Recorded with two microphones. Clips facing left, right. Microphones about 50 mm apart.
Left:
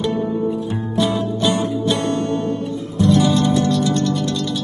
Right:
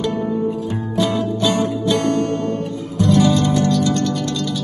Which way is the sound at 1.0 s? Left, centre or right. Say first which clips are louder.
Right 1 dB; left.